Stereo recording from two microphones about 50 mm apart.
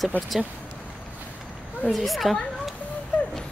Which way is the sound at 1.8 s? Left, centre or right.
Centre.